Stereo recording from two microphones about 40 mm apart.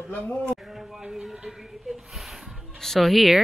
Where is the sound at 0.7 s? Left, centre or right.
Centre.